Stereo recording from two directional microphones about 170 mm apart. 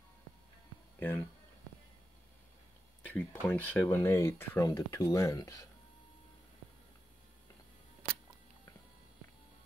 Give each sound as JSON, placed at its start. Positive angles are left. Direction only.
{"t": 0.9, "sound": "speech", "side_deg": 10}
{"t": 3.1, "sound": "speech", "side_deg": 10}